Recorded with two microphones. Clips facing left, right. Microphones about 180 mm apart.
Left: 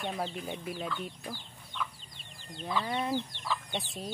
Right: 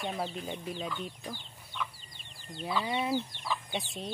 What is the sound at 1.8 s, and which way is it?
Chicken, 5° right (ahead or behind).